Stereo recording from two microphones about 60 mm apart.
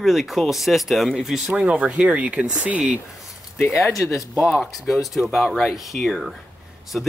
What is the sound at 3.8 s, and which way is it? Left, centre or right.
Speech, left.